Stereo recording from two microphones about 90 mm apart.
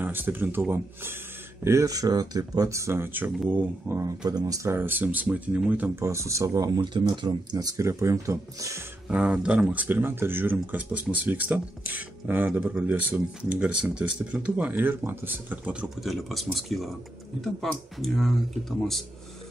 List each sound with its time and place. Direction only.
0.0 s speech: 20° right (ahead or behind)
1.6 s speech: 30° right (ahead or behind)
4.2 s speech: 50° right (ahead or behind)
4.6 s speech: 25° right (ahead or behind)
6.0 s speech: 35° right (ahead or behind)
6.8 s speech: 55° right (ahead or behind); by 8.8 s 35° right (ahead or behind)
9.1 s speech: 10° right (ahead or behind)
16.0 s speech: centre (ahead or behind)